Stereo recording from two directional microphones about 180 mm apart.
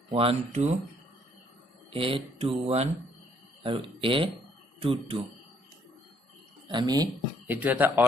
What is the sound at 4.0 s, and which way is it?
A man's voice, 30° right (ahead or behind).